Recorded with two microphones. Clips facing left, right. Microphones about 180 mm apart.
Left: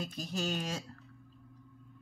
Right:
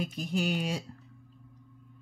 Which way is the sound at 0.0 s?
15° right (ahead or behind).